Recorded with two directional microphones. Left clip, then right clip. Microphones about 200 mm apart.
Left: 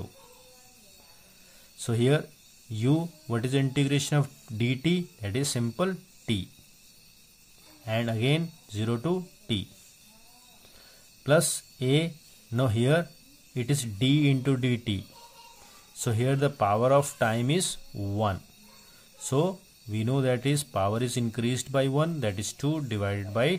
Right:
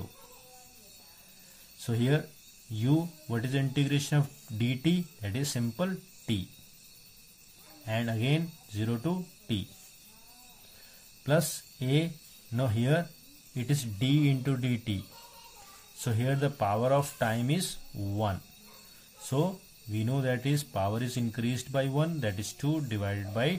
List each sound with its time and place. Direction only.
1.8 s speech: 30° left (ahead or behind)
7.8 s speech: 30° left (ahead or behind)
11.2 s speech: 25° left (ahead or behind)
16.0 s speech: 30° left (ahead or behind)